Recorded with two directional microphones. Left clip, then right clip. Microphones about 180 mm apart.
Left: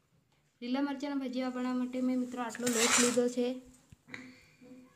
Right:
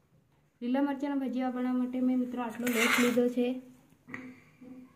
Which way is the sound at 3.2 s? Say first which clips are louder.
Right 2 dB; 10° left (ahead or behind).